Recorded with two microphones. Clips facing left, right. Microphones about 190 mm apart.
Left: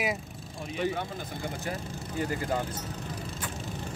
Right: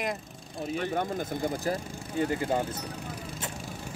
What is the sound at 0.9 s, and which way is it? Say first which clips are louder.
Speech: right 5 dB; 40° right (ahead or behind).